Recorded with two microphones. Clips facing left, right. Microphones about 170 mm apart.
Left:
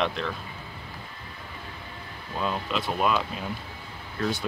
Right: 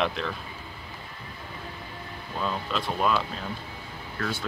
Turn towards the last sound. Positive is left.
turn(degrees=15)  # may be behind; listen again after turning